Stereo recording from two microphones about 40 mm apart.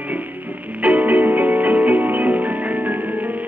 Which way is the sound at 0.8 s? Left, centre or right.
Right.